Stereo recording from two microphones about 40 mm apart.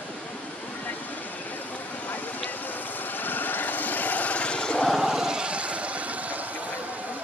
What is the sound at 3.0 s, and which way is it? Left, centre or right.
Vehicle, left.